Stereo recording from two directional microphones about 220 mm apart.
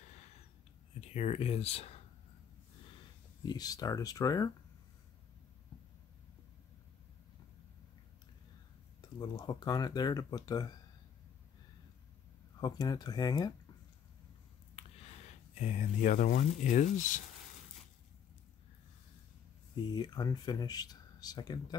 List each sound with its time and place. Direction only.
1.1 s speech: 30° left (ahead or behind)
3.4 s speech: 15° left (ahead or behind)
9.2 s speech: 20° left (ahead or behind)
12.5 s speech: 20° left (ahead or behind)
15.5 s speech: 35° left (ahead or behind)
19.9 s speech: 20° left (ahead or behind)